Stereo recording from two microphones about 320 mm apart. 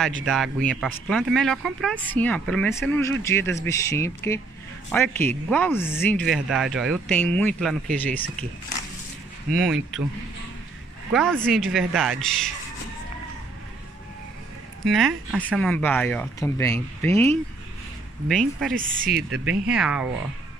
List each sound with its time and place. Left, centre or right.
0.2 s speech: centre
9.6 s speech: centre
11.1 s speech: centre
14.9 s speech: centre
18.8 s speech: right
19.1 s speech: centre